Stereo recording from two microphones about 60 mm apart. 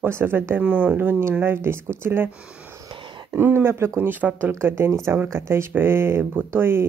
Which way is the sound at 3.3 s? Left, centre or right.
Right.